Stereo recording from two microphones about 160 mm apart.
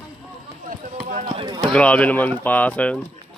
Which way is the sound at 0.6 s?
50° right (ahead or behind).